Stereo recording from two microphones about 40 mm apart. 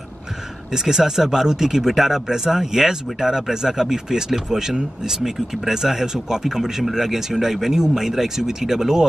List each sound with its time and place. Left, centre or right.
0.7 s speech: centre